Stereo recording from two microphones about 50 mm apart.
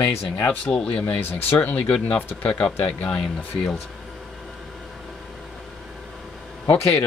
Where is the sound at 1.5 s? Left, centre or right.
Left.